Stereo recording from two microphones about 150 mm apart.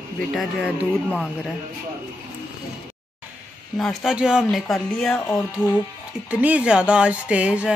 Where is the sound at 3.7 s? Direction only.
Centre (ahead or behind).